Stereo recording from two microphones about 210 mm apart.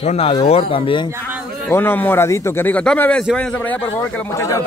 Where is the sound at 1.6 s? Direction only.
10° left (ahead or behind).